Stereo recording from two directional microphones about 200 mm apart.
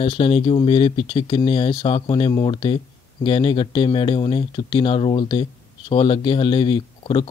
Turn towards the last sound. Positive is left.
turn(degrees=25)  # may be behind; listen again after turning